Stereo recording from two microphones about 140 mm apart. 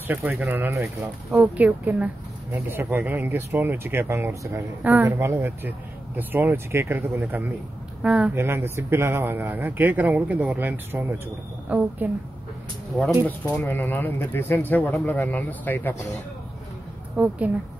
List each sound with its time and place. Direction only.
0.1 s speech: 15° right (ahead or behind)
8.5 s speech: 20° right (ahead or behind)
13.4 s speech: 10° left (ahead or behind)
17.2 s speech: 10° right (ahead or behind)